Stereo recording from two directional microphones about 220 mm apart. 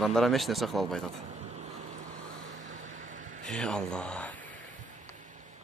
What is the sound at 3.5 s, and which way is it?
Speech, 5° left (ahead or behind).